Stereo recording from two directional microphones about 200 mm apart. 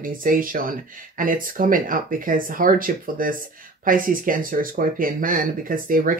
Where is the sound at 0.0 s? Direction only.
45° right (ahead or behind).